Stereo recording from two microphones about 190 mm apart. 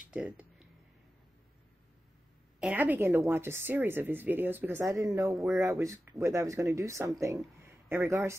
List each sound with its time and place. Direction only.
0.1 s a sound: 5° right (ahead or behind)
2.6 s a woman's voice: 10° right (ahead or behind)
5.3 s speech: centre (ahead or behind)
5.6 s a woman's voice: 15° right (ahead or behind)